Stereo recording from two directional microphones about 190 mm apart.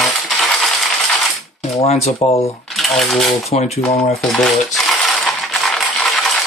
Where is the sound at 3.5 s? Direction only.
35° left (ahead or behind).